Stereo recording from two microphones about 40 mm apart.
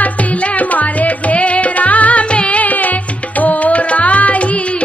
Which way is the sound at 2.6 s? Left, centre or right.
Left.